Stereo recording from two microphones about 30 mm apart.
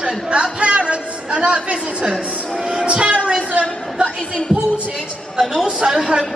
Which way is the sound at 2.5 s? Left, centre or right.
Right.